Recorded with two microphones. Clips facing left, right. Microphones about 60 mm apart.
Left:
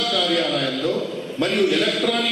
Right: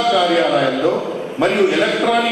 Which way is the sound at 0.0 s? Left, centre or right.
Centre.